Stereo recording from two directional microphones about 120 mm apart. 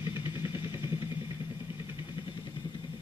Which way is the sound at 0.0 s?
20° right (ahead or behind).